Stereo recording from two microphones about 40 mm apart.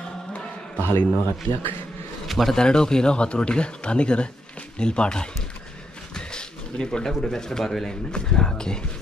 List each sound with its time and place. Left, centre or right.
0.7 s a man's voice: left
1.5 s a man's voice: left
2.2 s a sound: centre
2.5 s speech: centre